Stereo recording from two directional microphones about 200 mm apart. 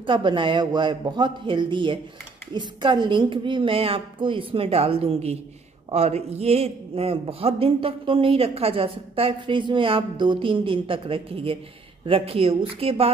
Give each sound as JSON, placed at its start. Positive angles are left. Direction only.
{"t": 0.0, "sound": "a man's voice", "side_deg": -25}